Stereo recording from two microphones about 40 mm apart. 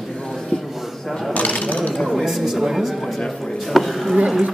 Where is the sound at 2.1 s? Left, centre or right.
Centre.